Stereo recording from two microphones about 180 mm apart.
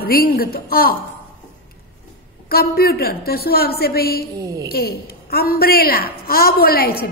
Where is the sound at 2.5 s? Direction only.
60° left (ahead or behind).